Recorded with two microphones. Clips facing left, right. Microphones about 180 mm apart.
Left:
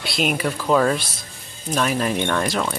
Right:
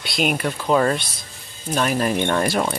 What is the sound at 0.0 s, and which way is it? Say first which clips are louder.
Speech: even; centre (ahead or behind).